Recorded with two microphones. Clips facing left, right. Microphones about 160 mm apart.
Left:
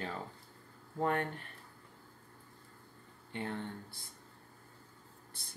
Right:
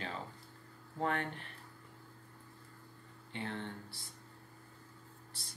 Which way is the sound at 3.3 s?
45° left (ahead or behind).